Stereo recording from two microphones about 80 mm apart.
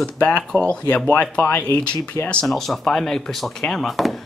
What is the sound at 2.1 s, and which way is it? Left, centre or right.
Speech, right.